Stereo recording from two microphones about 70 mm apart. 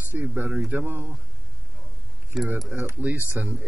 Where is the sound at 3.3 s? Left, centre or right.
Right.